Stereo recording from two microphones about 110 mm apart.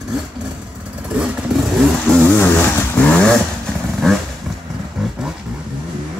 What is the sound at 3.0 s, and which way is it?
Vehicle, 10° left (ahead or behind).